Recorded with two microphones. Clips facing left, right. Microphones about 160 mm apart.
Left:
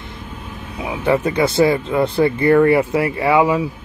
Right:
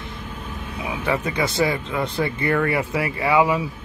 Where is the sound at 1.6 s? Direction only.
30° left (ahead or behind).